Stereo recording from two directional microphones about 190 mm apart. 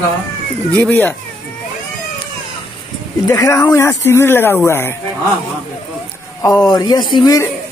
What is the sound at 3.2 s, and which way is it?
Speech, 15° left (ahead or behind).